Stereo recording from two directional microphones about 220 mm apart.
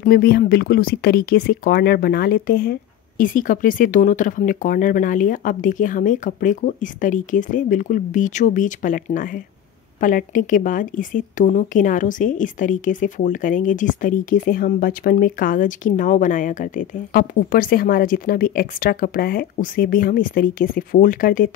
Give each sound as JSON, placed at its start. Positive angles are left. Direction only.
{"t": 0.0, "sound": "a woman's voice", "side_deg": 45}